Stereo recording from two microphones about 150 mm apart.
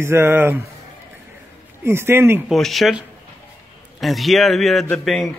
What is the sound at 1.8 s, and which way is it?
Speech, 15° right (ahead or behind).